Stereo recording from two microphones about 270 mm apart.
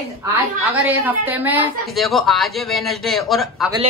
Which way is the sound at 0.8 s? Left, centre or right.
Centre.